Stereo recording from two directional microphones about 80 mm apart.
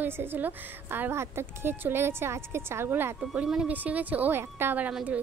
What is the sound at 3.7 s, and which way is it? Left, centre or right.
A woman's voice, right.